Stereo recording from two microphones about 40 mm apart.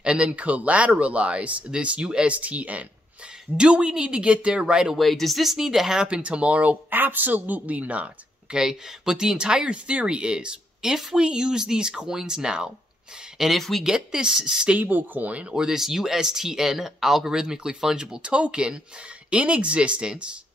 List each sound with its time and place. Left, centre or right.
0.0 s speech: right
3.5 s speech: right
4.9 s speech: centre
6.0 s speech: right
6.9 s a woman's voice: right
8.5 s speech: centre
10.9 s speech: centre
13.6 s speech: centre
13.8 s speech: centre
14.8 s a woman's voice: right
15.5 s speech: centre